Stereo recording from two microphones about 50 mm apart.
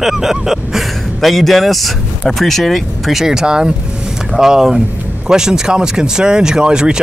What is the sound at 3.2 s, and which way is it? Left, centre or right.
Speech, centre.